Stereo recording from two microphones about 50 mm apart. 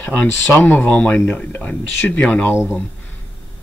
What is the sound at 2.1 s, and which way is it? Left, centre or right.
Speech, left.